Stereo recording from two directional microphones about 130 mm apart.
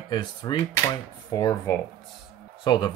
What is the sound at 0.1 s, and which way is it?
Speech, 35° left (ahead or behind).